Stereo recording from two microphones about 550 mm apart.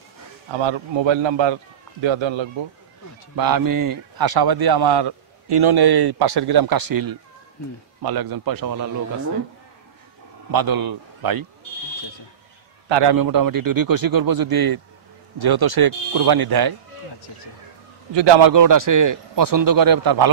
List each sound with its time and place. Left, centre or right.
0.5 s a man's voice: right
3.3 s a man's voice: right
10.5 s a man's voice: right
12.8 s a man's voice: right
18.1 s a man's voice: right
18.5 s a man's voice: right